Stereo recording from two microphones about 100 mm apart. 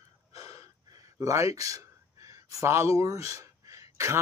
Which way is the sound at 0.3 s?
35° right (ahead or behind).